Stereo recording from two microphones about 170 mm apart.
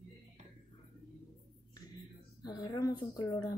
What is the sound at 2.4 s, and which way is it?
A woman's voice, 25° left (ahead or behind).